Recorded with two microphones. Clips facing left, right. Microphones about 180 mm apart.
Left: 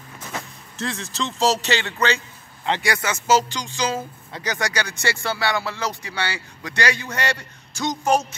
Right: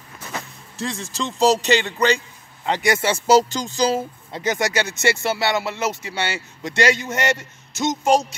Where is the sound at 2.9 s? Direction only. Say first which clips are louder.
Right 4 dB; 30° right (ahead or behind).